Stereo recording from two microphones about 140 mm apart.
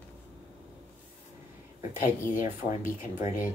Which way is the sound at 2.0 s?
70° left (ahead or behind).